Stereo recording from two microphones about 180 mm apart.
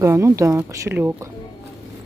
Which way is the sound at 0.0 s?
15° right (ahead or behind).